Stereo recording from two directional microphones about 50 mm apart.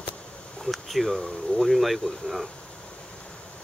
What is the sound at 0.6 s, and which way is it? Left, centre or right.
Speech, centre.